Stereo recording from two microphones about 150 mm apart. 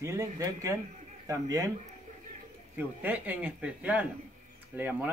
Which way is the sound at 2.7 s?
10° right (ahead or behind).